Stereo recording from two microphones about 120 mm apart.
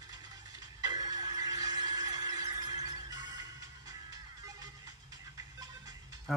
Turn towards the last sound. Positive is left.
turn(degrees=0)  # may be behind; listen again after turning